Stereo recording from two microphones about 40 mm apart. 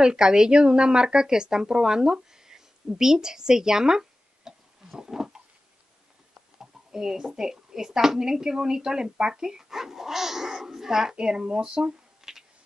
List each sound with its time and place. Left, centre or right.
0.0 s speech: centre
6.6 s a woman's voice: centre